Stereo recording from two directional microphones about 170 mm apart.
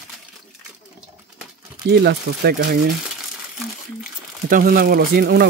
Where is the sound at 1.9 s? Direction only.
75° right (ahead or behind).